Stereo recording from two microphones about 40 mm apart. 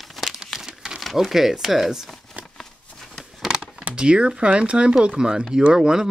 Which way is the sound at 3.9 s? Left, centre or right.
Right.